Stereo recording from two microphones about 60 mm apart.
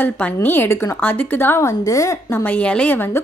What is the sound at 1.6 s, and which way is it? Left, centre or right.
Speech, left.